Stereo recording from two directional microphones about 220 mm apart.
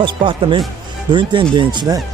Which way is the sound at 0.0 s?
20° right (ahead or behind).